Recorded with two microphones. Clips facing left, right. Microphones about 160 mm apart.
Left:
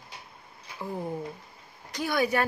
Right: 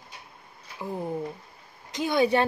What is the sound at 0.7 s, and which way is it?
Speech, 15° right (ahead or behind).